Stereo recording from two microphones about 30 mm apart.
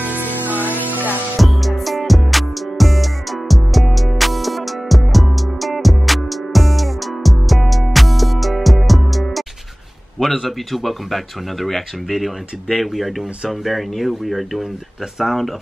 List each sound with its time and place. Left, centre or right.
0.0 s music: right
1.4 s music: centre
10.1 s speech: centre